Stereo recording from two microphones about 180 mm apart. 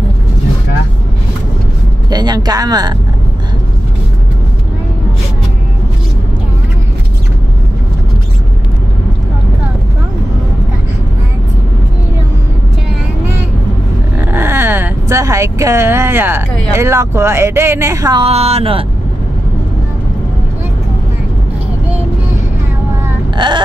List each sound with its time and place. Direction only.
2.0 s speech: 20° right (ahead or behind)
14.2 s speech: 10° right (ahead or behind)
18.2 s speech: 35° right (ahead or behind)
23.3 s a sound: 25° right (ahead or behind)